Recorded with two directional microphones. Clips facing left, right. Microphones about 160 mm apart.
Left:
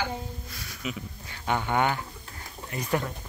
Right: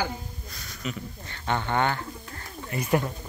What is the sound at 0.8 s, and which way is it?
Speech, 5° left (ahead or behind).